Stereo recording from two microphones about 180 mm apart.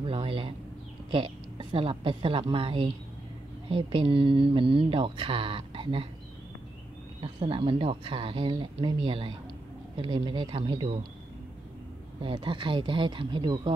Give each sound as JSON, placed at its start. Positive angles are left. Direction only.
{"t": 0.0, "sound": "speech", "side_deg": -30}
{"t": 7.2, "sound": "speech", "side_deg": -30}
{"t": 12.2, "sound": "speech", "side_deg": -30}